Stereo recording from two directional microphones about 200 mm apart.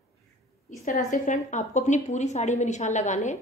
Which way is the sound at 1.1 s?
40° left (ahead or behind).